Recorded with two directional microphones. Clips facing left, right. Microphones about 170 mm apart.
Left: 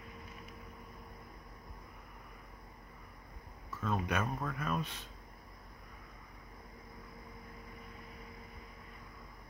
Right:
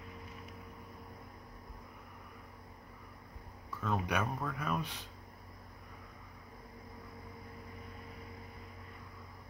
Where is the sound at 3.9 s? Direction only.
15° right (ahead or behind).